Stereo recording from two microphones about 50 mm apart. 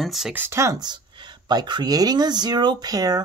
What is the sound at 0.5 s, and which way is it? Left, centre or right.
Speech, right.